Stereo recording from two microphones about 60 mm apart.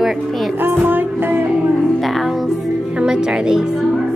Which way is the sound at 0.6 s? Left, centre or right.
Right.